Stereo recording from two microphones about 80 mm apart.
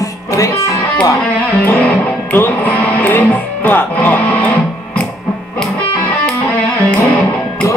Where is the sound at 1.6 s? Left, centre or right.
Left.